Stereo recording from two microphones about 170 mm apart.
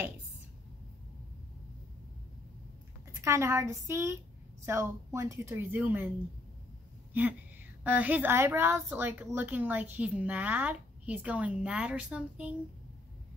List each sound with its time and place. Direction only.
3.2 s a woman's voice: 15° right (ahead or behind)
7.1 s a woman's voice: 10° right (ahead or behind)